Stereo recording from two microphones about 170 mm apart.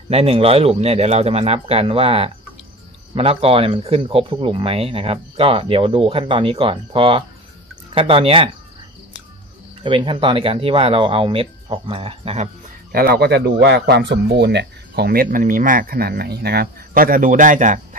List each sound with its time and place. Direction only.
0.1 s speech: 35° right (ahead or behind)
9.8 s speech: 30° right (ahead or behind)
12.9 s speech: 65° right (ahead or behind); by 17.7 s 50° right (ahead or behind)